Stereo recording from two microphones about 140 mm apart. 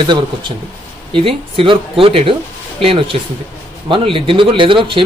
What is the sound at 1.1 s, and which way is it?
Speech, 40° right (ahead or behind).